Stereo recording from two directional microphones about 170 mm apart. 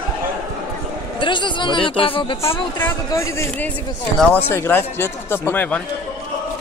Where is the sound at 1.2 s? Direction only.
30° left (ahead or behind).